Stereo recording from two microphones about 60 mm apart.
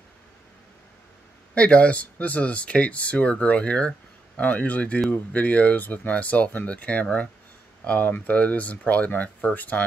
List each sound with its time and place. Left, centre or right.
1.5 s speech: left